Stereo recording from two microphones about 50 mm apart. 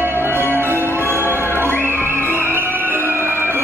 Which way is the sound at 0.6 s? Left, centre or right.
Right.